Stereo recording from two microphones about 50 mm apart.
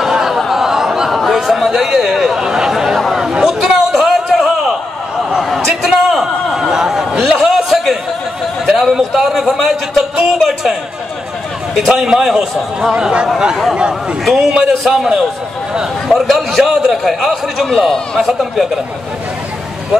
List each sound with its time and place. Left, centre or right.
0.0 s a sound: centre
1.1 s chatter: centre
3.2 s a sound: centre
11.8 s a man's voice: centre
12.9 s speech: centre
14.2 s a man's voice: centre